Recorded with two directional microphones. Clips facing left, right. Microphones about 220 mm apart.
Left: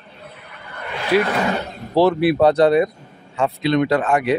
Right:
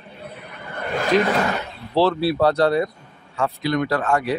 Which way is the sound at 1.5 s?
45° left (ahead or behind).